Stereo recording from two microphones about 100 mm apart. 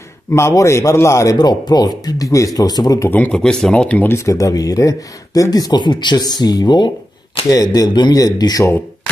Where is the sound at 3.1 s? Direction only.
15° left (ahead or behind).